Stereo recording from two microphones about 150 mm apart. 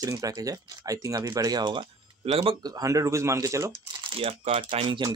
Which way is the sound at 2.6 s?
25° right (ahead or behind).